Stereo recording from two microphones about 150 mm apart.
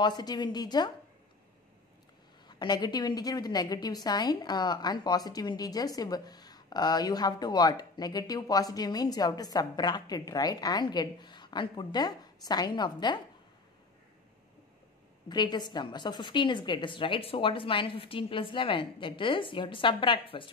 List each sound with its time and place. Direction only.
0.0 s a woman's voice: 30° left (ahead or behind)
2.4 s a woman's voice: 30° left (ahead or behind)
15.2 s a woman's voice: 30° left (ahead or behind)